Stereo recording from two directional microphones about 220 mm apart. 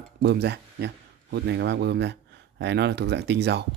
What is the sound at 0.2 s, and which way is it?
A man's voice, 50° right (ahead or behind).